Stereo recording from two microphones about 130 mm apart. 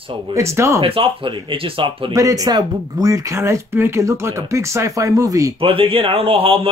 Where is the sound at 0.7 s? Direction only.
45° right (ahead or behind).